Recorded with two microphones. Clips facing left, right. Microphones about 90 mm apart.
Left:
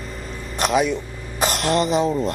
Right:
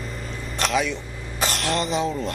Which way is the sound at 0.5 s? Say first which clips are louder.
Left 4 dB; 15° left (ahead or behind).